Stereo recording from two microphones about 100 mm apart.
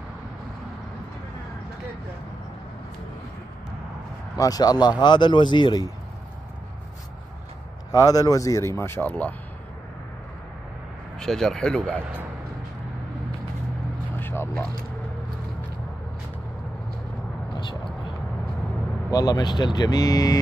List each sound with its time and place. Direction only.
4.4 s a man's voice: 40° left (ahead or behind)
7.9 s speech: 40° left (ahead or behind); by 9.3 s 15° left (ahead or behind)
11.1 s speech: 5° left (ahead or behind)
14.2 s speech: 25° left (ahead or behind)
17.6 s vehicle: 55° left (ahead or behind)
19.0 s speech: 40° left (ahead or behind)